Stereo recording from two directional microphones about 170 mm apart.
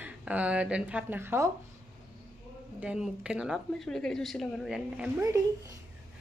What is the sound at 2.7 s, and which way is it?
A woman's voice, 5° right (ahead or behind).